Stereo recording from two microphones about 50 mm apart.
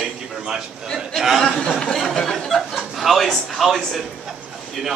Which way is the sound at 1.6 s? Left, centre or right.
Centre.